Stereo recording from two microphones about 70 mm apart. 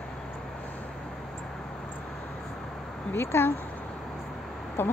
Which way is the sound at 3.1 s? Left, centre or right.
Left.